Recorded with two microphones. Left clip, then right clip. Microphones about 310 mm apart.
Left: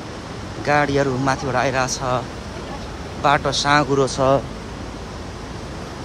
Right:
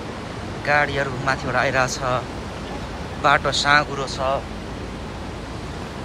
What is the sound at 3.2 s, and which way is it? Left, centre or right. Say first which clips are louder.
Speech: even; centre.